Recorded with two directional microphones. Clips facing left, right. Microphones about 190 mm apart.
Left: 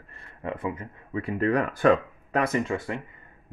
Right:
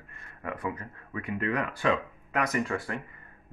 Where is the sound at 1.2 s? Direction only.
35° left (ahead or behind).